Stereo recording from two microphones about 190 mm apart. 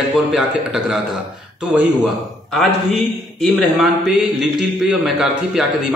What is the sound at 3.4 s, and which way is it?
A man's voice, centre (ahead or behind).